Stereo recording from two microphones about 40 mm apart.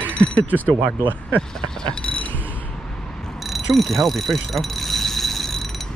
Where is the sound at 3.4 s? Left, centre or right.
Centre.